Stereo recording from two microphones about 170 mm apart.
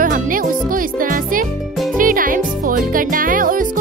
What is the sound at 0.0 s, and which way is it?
Music, 50° right (ahead or behind).